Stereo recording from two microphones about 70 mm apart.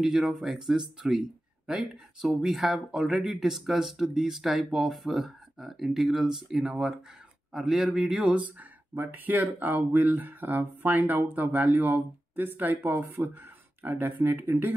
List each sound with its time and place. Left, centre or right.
0.0 s speech: centre
8.5 s speech: right